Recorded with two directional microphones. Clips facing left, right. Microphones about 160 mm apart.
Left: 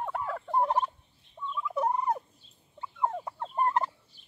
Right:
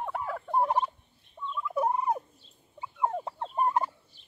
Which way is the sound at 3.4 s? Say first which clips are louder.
Even; 5° right (ahead or behind).